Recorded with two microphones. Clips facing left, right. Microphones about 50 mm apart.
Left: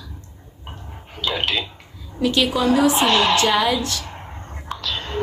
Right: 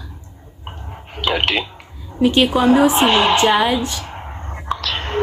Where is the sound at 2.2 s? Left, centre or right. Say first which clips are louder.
Right 5 dB; right.